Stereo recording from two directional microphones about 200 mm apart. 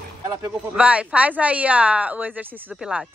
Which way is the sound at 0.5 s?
5° right (ahead or behind).